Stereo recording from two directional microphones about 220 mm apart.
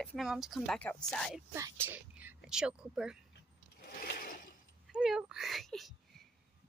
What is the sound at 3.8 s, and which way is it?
Mechanisms, 45° left (ahead or behind).